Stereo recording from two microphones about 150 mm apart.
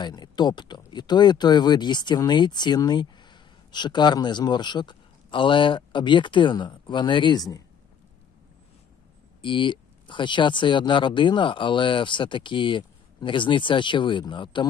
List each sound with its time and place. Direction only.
0.0 s speech: 30° left (ahead or behind)
9.4 s speech: 35° left (ahead or behind)